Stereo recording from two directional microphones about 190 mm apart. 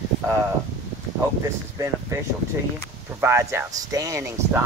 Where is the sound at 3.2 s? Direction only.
15° right (ahead or behind).